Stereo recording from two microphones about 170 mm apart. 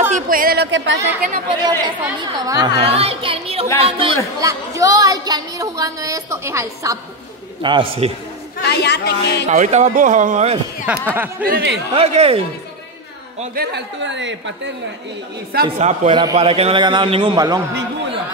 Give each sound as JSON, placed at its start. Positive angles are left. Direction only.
{"t": 0.1, "sound": "speech", "side_deg": -55}
{"t": 1.5, "sound": "a woman's voice", "side_deg": -25}
{"t": 2.8, "sound": "speech", "side_deg": -35}
{"t": 4.4, "sound": "a woman's voice", "side_deg": -20}
{"t": 7.6, "sound": "speech", "side_deg": -30}
{"t": 8.6, "sound": "speech", "side_deg": 75}
{"t": 9.5, "sound": "speech", "side_deg": -40}
{"t": 11.1, "sound": "speech", "side_deg": -10}
{"t": 11.4, "sound": "speech", "side_deg": -70}
{"t": 11.9, "sound": "speech", "side_deg": -35}
{"t": 13.6, "sound": "a woman's voice", "side_deg": -90}
{"t": 15.8, "sound": "speech", "side_deg": -40}
{"t": 16.1, "sound": "a woman's voice", "side_deg": -25}
{"t": 16.3, "sound": "a woman's voice", "side_deg": -35}